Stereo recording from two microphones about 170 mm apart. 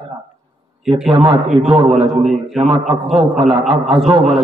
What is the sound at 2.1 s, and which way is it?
Speech, centre (ahead or behind).